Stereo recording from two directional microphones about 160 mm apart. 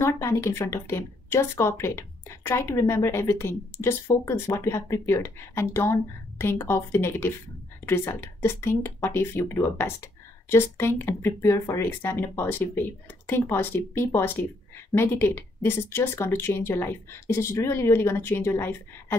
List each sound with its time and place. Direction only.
0.0 s speech: 15° left (ahead or behind)